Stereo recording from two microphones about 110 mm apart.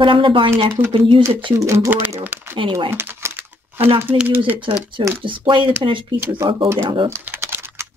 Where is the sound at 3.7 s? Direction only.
55° right (ahead or behind).